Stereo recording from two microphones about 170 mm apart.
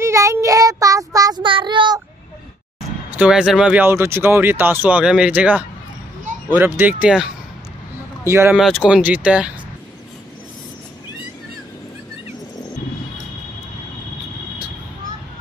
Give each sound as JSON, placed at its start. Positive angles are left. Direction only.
{"t": 0.0, "sound": "child singing", "side_deg": -15}
{"t": 3.2, "sound": "speech", "side_deg": -5}
{"t": 8.3, "sound": "speech", "side_deg": -15}
{"t": 8.5, "sound": "speech", "side_deg": 0}